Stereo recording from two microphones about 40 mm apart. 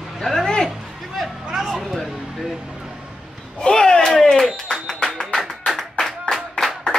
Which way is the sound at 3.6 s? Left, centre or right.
Centre.